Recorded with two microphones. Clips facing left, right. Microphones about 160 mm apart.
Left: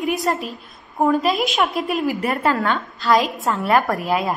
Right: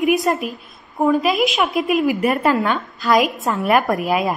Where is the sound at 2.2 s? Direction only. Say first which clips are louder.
Right 3 dB; 15° right (ahead or behind).